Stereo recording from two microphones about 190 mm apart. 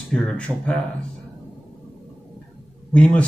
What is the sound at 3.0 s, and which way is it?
Speech, 5° left (ahead or behind).